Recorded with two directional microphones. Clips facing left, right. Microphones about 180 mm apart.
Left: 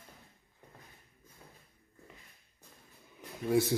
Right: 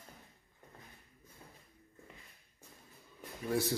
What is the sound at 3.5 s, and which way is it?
Speech, 15° left (ahead or behind).